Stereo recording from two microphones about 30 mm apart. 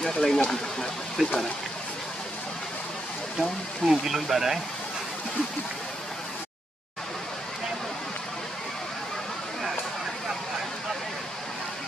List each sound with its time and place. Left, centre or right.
0.3 s speech: centre
1.2 s speech: centre
3.3 s speech: centre